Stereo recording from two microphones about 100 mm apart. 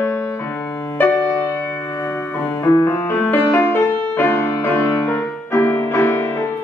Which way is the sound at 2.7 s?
20° left (ahead or behind).